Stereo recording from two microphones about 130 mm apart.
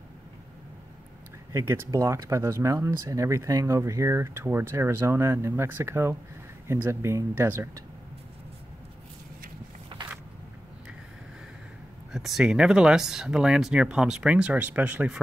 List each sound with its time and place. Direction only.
1.5 s speech: 20° right (ahead or behind)
12.1 s speech: centre (ahead or behind)